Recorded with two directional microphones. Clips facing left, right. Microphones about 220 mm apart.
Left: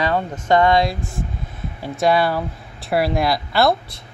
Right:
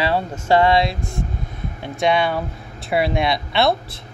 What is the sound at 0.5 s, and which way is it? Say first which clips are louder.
Speech: even; 30° right (ahead or behind).